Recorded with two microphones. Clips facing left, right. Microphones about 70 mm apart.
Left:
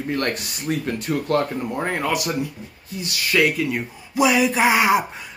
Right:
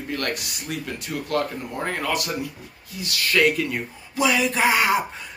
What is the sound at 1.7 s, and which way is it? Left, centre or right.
Speech, centre.